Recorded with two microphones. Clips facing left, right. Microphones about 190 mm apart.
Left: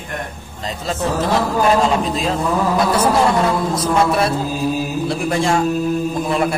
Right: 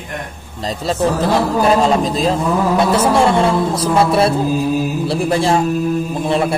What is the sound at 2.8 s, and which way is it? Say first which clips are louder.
A man's voice: right 2 dB; 25° right (ahead or behind).